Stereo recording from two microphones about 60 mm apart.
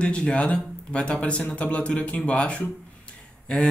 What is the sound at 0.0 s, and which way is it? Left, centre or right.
Speech, centre.